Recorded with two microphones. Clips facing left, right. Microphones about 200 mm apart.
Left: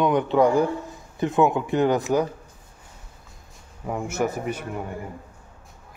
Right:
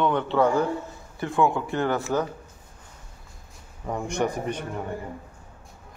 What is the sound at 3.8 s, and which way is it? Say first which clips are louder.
Speech: left 1 dB; 5° left (ahead or behind).